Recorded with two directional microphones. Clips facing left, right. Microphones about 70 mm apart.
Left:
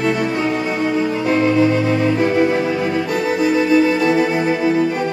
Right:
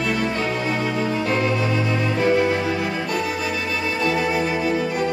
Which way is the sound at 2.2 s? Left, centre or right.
Centre.